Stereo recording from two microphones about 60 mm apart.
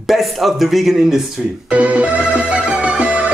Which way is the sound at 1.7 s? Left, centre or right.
Right.